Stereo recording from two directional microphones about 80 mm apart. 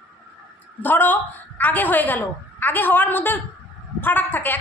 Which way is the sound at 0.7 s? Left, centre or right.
Left.